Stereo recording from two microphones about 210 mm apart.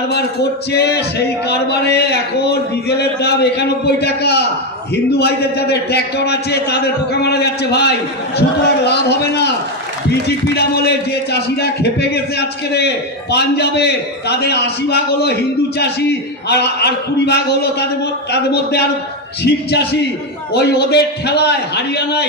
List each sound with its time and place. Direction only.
0.1 s a man's voice: 50° left (ahead or behind)
20.5 s a man's voice: 50° left (ahead or behind)